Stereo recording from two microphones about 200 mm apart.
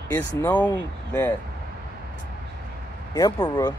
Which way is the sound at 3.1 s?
20° left (ahead or behind).